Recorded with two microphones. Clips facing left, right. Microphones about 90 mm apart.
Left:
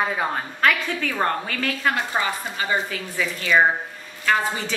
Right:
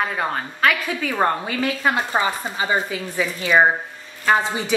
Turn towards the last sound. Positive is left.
turn(degrees=-20)  # may be behind; listen again after turning